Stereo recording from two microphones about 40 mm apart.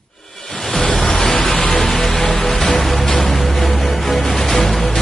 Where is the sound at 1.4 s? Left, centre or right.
Left.